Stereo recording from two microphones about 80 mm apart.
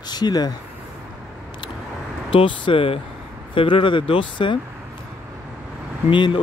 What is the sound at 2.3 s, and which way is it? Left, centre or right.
Speech, left.